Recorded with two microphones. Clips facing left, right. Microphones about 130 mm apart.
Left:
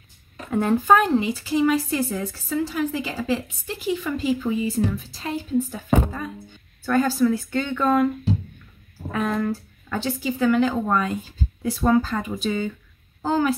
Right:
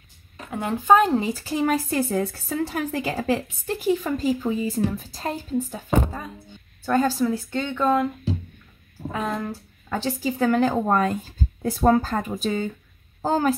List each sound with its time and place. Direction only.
0.5 s speech: 10° right (ahead or behind)
0.9 s a woman's voice: 35° right (ahead or behind)
6.9 s a woman's voice: 30° right (ahead or behind)
9.1 s speech: 20° right (ahead or behind)
9.9 s a woman's voice: 40° right (ahead or behind)